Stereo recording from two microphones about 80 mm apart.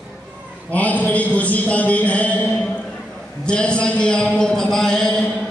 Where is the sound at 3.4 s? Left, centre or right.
Centre.